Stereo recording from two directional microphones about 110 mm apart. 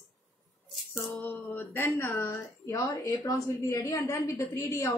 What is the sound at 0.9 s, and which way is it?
A woman's voice, 20° left (ahead or behind).